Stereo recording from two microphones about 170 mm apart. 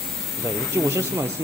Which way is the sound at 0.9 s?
15° right (ahead or behind).